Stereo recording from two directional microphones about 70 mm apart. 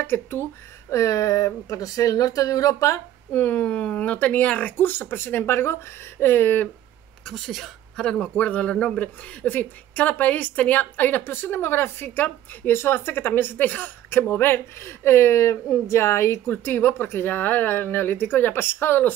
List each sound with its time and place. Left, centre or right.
0.0 s speech: left
0.9 s speech: left
3.3 s speech: left
7.2 s speech: centre
8.0 s speech: centre